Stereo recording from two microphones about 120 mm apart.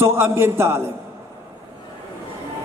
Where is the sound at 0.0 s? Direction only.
20° right (ahead or behind).